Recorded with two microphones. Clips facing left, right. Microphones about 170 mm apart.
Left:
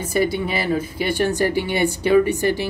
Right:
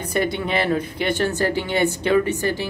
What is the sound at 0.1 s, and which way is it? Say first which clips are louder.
Speech: left 1 dB; 5° left (ahead or behind).